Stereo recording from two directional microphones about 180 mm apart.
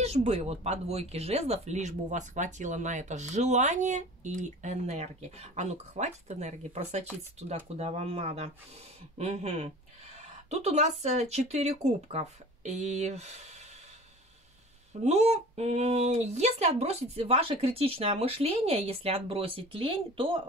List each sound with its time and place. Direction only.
0.0 s speech: 35° right (ahead or behind)
15.0 s speech: 35° right (ahead or behind)